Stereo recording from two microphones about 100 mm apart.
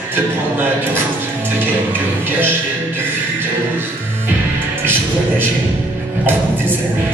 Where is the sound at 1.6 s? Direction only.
20° right (ahead or behind).